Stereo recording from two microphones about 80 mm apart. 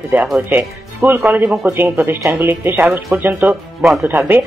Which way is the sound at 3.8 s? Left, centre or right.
Centre.